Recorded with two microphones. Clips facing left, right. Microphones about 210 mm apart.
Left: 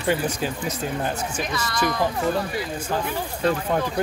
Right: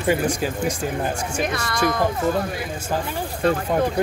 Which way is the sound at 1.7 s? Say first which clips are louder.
Right 2 dB; 50° right (ahead or behind).